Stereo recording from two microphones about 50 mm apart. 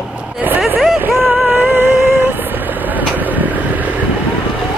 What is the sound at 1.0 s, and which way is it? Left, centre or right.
Vehicle, right.